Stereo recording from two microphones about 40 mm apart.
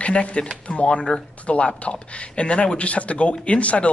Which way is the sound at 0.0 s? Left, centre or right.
Left.